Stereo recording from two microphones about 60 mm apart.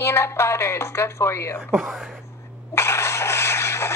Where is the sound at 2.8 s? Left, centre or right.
Left.